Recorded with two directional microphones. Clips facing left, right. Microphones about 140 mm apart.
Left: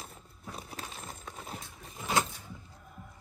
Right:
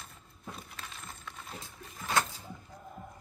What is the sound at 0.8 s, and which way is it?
Coin, 40° left (ahead or behind).